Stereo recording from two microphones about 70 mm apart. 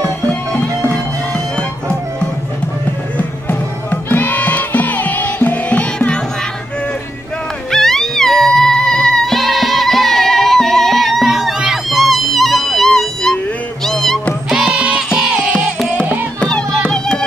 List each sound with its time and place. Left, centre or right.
0.6 s music: left
3.2 s music: left
7.7 s music: centre
14.5 s music: centre
16.3 s music: centre